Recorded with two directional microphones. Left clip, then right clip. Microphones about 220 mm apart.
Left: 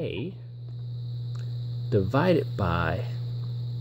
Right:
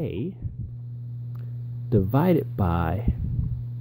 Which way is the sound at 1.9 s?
20° right (ahead or behind).